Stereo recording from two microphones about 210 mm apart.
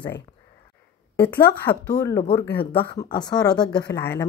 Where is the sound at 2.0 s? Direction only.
15° left (ahead or behind).